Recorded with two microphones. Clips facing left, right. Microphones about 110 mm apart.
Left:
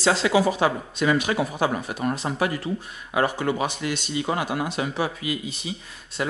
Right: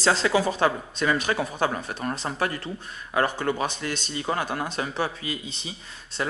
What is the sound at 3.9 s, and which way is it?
Speech, 35° right (ahead or behind).